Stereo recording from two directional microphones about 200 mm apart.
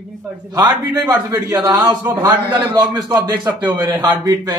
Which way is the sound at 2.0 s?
10° right (ahead or behind).